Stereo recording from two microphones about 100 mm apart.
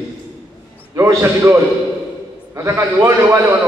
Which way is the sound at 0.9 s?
30° right (ahead or behind).